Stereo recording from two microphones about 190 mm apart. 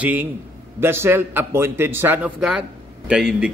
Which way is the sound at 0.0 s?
10° right (ahead or behind).